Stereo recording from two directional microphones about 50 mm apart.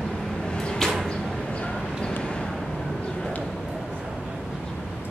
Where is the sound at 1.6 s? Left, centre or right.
Centre.